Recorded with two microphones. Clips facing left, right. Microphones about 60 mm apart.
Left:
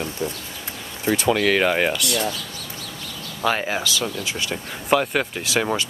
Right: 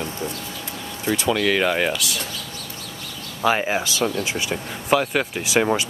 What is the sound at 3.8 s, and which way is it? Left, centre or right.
Speech, right.